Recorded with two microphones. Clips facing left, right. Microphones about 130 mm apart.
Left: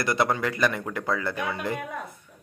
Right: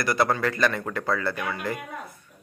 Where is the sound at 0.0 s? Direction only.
20° left (ahead or behind).